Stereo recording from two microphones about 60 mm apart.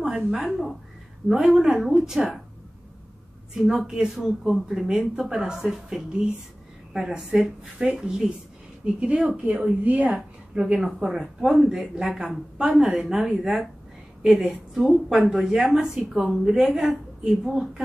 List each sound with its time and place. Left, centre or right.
0.0 s a woman's voice: centre
3.7 s speech: centre
10.6 s a woman's voice: centre